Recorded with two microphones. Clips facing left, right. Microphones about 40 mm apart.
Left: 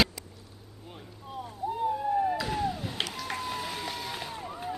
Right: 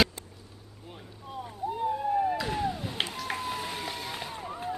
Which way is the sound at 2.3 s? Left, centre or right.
Centre.